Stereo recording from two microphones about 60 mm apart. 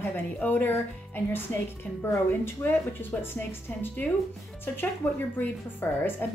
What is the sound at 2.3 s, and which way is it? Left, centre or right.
A woman's voice, left.